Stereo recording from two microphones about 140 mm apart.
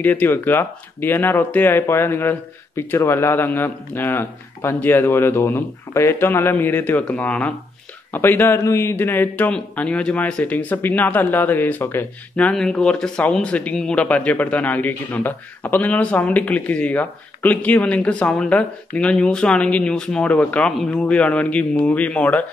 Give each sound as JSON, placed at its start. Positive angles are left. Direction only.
{"t": 0.0, "sound": "a man's voice", "side_deg": 10}